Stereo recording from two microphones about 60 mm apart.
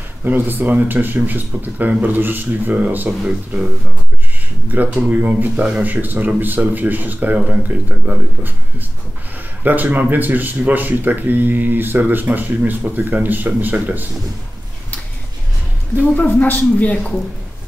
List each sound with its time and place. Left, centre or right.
0.2 s speech: right
4.7 s speech: right
7.3 s speech: centre
7.6 s speech: right
16.2 s speech: left